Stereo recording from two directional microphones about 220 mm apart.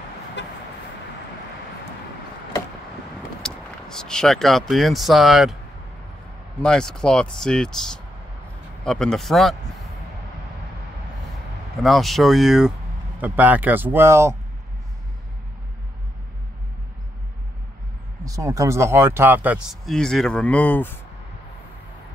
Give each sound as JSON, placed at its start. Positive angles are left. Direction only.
{"t": 0.4, "sound": "vehicle", "side_deg": 55}
{"t": 3.4, "sound": "speech", "side_deg": 5}
{"t": 6.6, "sound": "speech", "side_deg": 5}
{"t": 11.7, "sound": "speech", "side_deg": 0}
{"t": 18.2, "sound": "speech", "side_deg": -15}